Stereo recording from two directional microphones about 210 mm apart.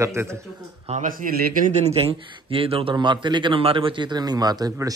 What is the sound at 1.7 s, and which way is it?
A man's voice, 30° right (ahead or behind).